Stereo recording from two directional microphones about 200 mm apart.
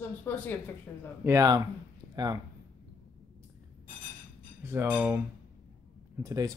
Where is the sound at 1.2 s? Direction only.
15° right (ahead or behind).